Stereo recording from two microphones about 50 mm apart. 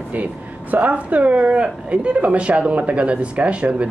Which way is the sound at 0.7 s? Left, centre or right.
Right.